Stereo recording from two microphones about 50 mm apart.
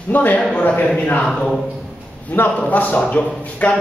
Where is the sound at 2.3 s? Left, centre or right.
Left.